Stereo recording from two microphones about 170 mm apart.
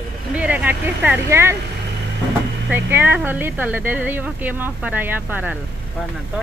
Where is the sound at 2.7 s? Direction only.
10° right (ahead or behind).